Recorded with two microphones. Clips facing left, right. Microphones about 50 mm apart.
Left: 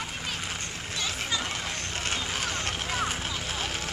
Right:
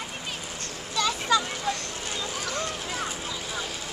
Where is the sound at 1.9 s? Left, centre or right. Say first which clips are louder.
Left 2 dB; left.